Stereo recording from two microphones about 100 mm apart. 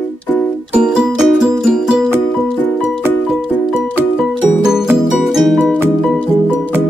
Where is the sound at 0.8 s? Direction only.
10° right (ahead or behind).